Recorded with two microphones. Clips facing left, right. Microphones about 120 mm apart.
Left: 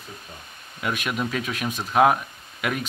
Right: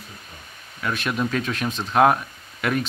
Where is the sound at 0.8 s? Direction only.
15° left (ahead or behind).